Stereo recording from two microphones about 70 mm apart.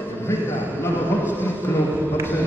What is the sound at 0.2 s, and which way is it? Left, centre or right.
A man's voice, left.